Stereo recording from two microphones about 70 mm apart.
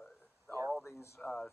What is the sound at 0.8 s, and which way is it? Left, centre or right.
Speech, left.